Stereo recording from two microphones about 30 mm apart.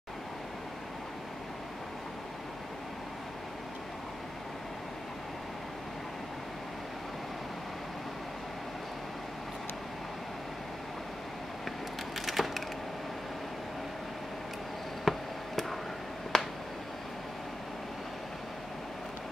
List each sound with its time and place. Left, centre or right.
12.3 s wood: centre
15.0 s a sound: centre
16.3 s finger snapping: left